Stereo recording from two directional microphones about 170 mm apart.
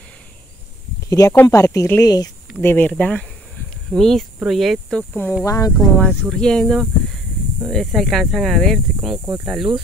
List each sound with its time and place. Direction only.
1.1 s speech: 15° left (ahead or behind)
2.7 s speech: 10° left (ahead or behind)
5.4 s speech: 20° left (ahead or behind); by 9.2 s centre (ahead or behind)
9.2 s speech: 10° right (ahead or behind)